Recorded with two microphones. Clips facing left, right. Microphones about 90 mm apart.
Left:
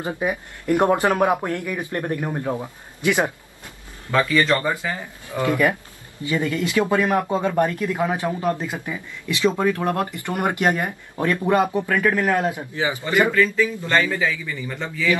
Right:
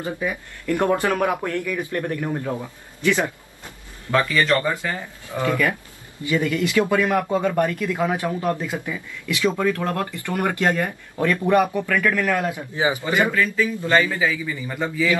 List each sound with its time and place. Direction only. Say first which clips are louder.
0.0 s speech: left 2 dB; 20° left (ahead or behind)
4.1 s speech: even; 5° left (ahead or behind)
5.4 s speech: left 2 dB; 20° left (ahead or behind)
12.7 s a man's voice: right 3 dB; 20° right (ahead or behind)
13.3 s a man's voice: left 2 dB; 5° right (ahead or behind)